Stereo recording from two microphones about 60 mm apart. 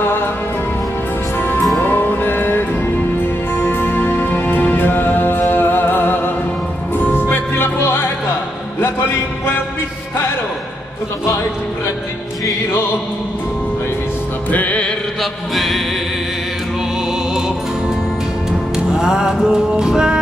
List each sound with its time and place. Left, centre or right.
0.0 s music: left
1.8 s music: left
14.5 s music: left
15.5 s music: centre
18.9 s music: centre